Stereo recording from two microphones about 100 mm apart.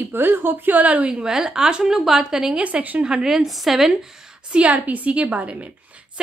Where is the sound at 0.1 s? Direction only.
20° right (ahead or behind); by 3.9 s centre (ahead or behind).